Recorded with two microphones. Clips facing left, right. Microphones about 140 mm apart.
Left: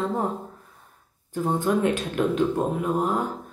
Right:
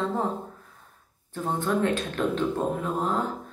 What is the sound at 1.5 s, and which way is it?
Speech, 15° left (ahead or behind).